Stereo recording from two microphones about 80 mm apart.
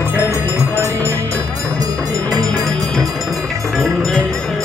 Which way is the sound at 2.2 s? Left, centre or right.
Right.